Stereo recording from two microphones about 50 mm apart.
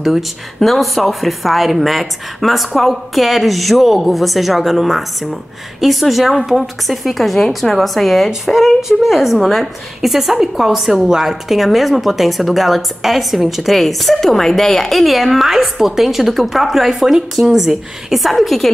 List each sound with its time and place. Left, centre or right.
0.6 s a woman's voice: centre